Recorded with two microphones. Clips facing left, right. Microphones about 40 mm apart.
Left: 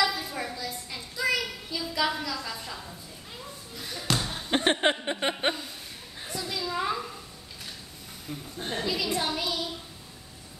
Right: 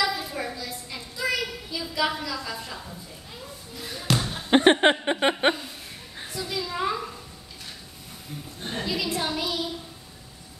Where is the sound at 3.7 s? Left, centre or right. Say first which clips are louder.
Right 3 dB; centre.